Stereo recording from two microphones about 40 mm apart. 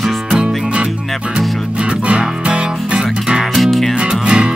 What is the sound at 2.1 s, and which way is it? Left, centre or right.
Music, right.